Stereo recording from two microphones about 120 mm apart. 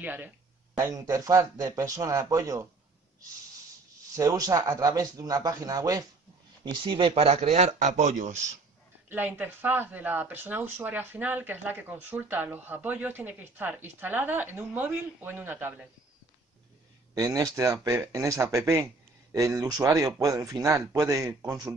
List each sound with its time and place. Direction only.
0.0 s speech: 15° right (ahead or behind)
0.7 s speech: 25° right (ahead or behind)
4.1 s speech: 25° right (ahead or behind)
6.6 s speech: 40° right (ahead or behind); by 8.5 s 90° right
9.1 s speech: 15° right (ahead or behind)
17.1 s speech: 30° right (ahead or behind)